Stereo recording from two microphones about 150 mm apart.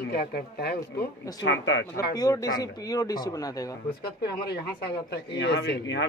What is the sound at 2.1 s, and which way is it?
Speech, 25° left (ahead or behind).